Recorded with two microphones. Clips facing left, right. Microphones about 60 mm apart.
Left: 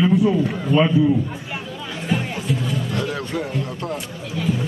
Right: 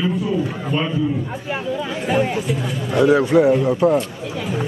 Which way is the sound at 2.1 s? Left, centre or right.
Centre.